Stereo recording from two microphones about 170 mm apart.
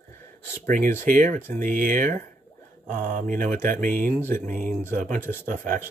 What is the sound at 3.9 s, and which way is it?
Speech, 10° left (ahead or behind).